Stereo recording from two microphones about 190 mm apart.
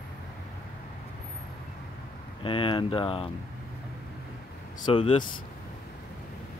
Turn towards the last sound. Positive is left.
turn(degrees=25)  # may be behind; listen again after turning